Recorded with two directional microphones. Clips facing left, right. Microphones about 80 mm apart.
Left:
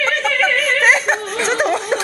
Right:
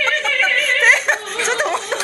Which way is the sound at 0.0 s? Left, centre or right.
Centre.